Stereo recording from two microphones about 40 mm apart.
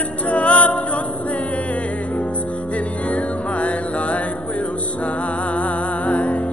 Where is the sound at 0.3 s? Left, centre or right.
Left.